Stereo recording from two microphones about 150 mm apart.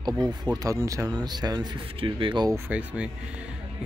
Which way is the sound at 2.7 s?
10° right (ahead or behind).